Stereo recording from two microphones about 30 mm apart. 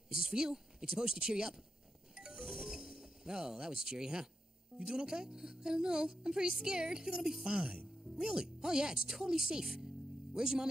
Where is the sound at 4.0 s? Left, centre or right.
Right.